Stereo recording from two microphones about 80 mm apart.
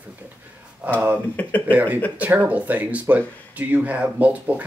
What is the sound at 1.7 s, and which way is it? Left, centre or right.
Speech, centre.